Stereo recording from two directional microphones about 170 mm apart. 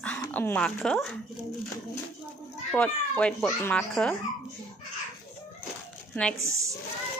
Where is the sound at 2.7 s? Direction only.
5° left (ahead or behind).